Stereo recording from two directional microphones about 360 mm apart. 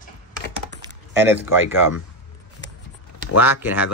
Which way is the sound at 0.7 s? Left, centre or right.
Centre.